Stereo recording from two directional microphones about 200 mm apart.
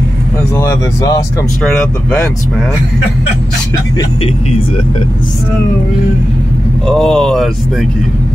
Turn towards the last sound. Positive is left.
turn(degrees=0)  # may be behind; listen again after turning